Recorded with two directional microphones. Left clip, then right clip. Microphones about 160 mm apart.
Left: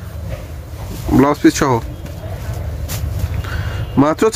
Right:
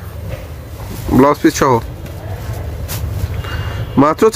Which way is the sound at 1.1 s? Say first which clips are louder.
Right 2 dB; 10° right (ahead or behind).